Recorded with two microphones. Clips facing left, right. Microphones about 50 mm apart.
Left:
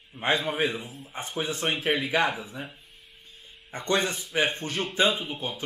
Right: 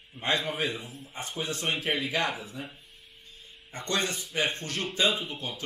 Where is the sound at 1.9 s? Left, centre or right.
Centre.